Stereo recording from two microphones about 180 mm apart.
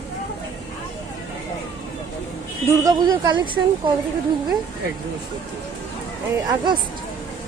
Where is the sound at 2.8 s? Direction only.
25° right (ahead or behind).